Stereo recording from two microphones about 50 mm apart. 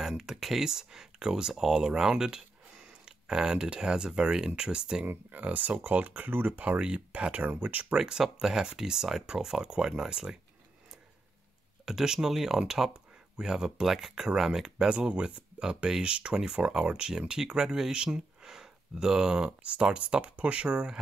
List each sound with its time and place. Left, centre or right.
0.1 s speech: centre
5.0 s speech: right
5.4 s speech: right
6.8 s speech: centre
8.0 s speech: centre
11.8 s speech: centre